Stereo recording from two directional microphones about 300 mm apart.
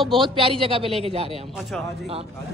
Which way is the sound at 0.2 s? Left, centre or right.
Centre.